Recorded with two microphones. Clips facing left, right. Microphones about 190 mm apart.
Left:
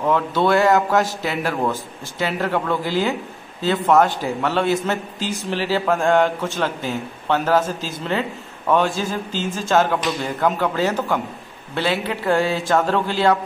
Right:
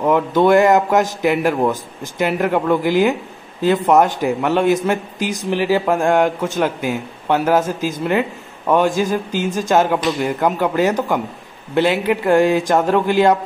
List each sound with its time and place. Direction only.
0.0 s a man's voice: 15° right (ahead or behind)